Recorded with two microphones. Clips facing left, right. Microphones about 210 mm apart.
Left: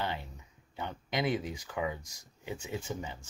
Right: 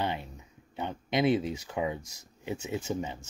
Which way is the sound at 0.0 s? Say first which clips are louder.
Right 4 dB; 20° right (ahead or behind).